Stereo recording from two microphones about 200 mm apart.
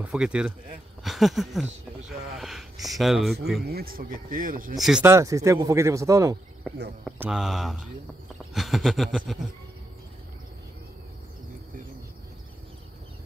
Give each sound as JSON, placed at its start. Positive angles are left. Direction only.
{"t": 0.0, "sound": "speech", "side_deg": -5}
{"t": 3.6, "sound": "speech", "side_deg": -50}
{"t": 4.7, "sound": "speech", "side_deg": 0}
{"t": 5.0, "sound": "speech", "side_deg": -15}
{"t": 6.7, "sound": "speech", "side_deg": 0}